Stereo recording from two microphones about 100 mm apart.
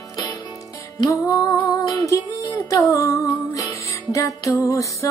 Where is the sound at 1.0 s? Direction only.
35° left (ahead or behind).